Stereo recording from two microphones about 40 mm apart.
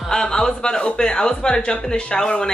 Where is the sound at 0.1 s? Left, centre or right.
Centre.